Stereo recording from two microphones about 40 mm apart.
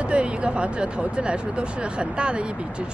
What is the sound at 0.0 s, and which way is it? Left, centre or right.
Speech, right.